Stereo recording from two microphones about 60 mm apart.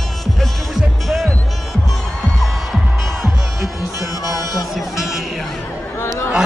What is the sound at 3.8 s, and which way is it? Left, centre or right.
Music, left.